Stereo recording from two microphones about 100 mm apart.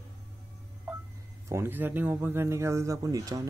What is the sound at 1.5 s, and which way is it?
Speech, 20° right (ahead or behind).